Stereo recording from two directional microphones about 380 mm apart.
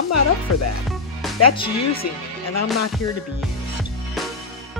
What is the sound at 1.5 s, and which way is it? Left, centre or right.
Speech, centre.